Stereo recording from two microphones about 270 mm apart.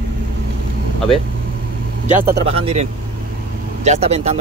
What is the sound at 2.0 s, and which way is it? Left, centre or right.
Speech, right.